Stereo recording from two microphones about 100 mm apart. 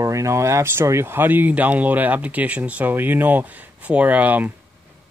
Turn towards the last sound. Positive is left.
turn(degrees=-15)  # may be behind; listen again after turning